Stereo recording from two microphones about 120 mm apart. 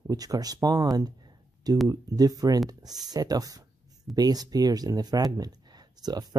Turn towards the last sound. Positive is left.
turn(degrees=-35)  # may be behind; listen again after turning